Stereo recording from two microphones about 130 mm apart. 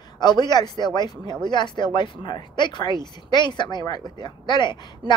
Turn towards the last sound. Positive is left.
turn(degrees=35)  # may be behind; listen again after turning